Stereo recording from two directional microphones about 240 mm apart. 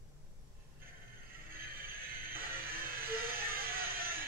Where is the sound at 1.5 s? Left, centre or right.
Right.